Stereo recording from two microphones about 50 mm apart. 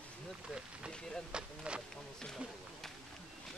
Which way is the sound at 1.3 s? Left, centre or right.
Centre.